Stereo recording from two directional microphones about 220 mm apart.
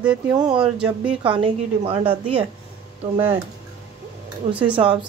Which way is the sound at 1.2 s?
25° right (ahead or behind).